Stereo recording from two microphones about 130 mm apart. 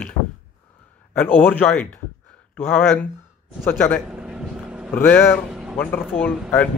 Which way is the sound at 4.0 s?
5° right (ahead or behind).